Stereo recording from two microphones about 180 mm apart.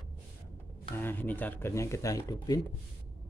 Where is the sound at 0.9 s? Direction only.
10° left (ahead or behind).